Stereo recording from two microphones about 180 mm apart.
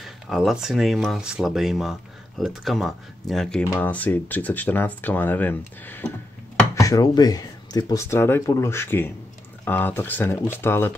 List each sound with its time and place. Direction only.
0.0 s speech: centre (ahead or behind)